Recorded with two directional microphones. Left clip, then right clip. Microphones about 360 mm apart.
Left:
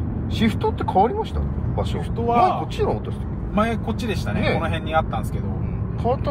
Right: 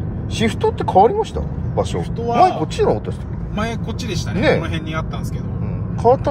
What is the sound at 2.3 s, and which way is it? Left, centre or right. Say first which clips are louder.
Speech: right 4 dB; right.